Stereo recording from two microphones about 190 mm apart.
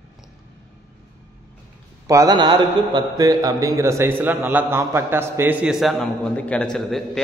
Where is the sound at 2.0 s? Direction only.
20° right (ahead or behind); by 6.6 s 5° left (ahead or behind).